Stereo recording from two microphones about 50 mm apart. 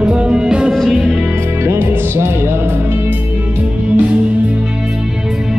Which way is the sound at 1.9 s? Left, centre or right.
Right.